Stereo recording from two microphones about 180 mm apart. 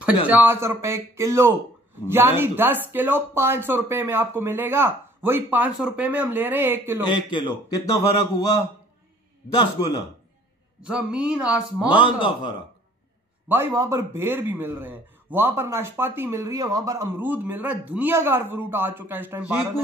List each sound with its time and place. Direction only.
0.3 s speech: 10° right (ahead or behind)
7.2 s a man's voice: 25° left (ahead or behind)
9.6 s a man's voice: 20° left (ahead or behind)
10.8 s a man's voice: 5° right (ahead or behind)
12.0 s a man's voice: 25° left (ahead or behind)
13.5 s speech: 15° right (ahead or behind)